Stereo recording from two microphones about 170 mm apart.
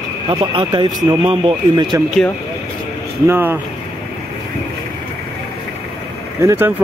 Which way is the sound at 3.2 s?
15° right (ahead or behind).